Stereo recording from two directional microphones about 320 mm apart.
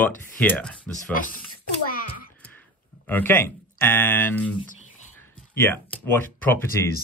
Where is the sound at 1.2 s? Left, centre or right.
Left.